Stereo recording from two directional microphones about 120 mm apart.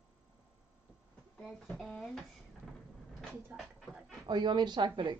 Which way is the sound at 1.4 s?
Centre (ahead or behind).